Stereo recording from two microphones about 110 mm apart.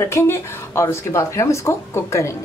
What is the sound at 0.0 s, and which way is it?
Speech, 25° left (ahead or behind).